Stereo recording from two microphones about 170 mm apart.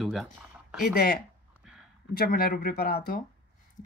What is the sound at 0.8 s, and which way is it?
Speech, 60° left (ahead or behind).